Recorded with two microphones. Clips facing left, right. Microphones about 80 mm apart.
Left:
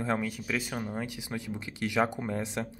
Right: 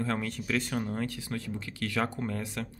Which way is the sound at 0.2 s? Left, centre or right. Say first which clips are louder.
Right 1 dB; centre.